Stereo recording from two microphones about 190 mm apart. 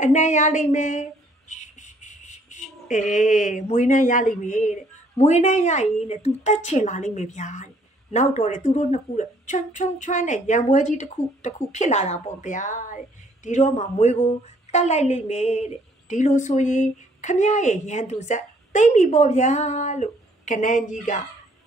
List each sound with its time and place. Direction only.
0.0 s a woman's voice: 40° left (ahead or behind)